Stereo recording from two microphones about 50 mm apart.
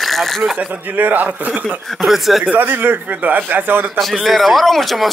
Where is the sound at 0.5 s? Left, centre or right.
Right.